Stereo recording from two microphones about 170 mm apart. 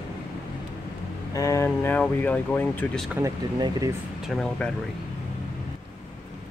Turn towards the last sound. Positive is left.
turn(degrees=5)  # may be behind; listen again after turning